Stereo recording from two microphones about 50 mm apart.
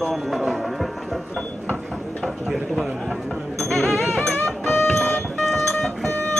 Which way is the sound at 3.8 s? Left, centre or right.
Centre.